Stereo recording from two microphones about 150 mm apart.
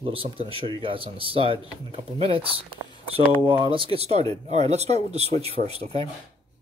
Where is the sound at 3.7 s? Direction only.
35° right (ahead or behind).